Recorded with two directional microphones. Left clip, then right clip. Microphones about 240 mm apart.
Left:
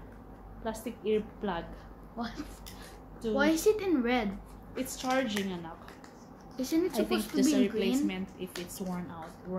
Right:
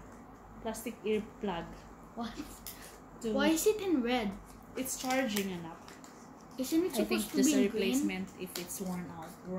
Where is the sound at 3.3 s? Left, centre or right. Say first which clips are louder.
Left 3 dB; centre.